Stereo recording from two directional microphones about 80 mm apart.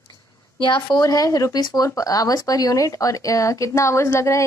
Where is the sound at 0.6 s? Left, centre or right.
Left.